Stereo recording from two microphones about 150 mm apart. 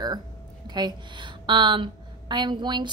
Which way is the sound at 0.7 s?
30° right (ahead or behind).